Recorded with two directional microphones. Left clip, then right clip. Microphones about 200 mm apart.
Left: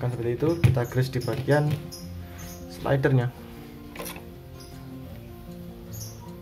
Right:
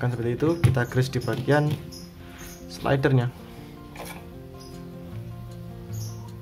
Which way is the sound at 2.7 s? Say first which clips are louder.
Right 1 dB; 15° right (ahead or behind).